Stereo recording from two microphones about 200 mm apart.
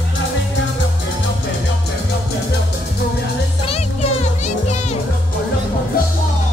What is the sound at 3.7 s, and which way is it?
Music, 30° left (ahead or behind).